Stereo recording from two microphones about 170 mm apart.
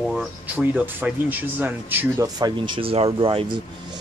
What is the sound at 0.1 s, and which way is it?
Speech, 5° right (ahead or behind).